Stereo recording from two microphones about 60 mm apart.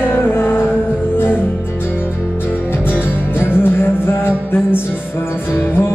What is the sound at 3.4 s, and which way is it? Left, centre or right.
Music, left.